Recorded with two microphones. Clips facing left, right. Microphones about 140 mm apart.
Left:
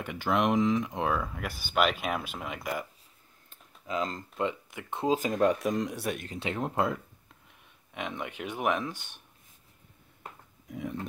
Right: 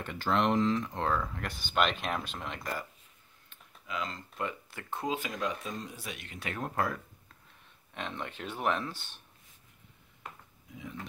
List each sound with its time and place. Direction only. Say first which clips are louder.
0.0 s speech: left 2 dB; 10° left (ahead or behind)
3.4 s computer keyboard: left 6 dB; 40° left (ahead or behind)
4.4 s speech: left 6 dB; 20° left (ahead or behind)
5.0 s speech: left 8 dB; 40° left (ahead or behind)
5.4 s speech: left 10 dB; 65° left (ahead or behind)
6.1 s speech: left 8 dB; 40° left (ahead or behind)
6.4 s speech: left 4 dB; 20° left (ahead or behind)
10.7 s a sound: left 8 dB; 65° left (ahead or behind)